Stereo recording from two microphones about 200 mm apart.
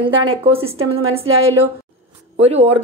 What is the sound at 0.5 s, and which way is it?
Speech, 30° right (ahead or behind).